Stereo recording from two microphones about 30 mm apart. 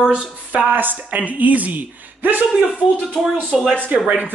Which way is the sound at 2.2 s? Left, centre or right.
Right.